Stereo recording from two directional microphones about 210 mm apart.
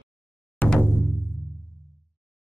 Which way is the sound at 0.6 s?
5° left (ahead or behind).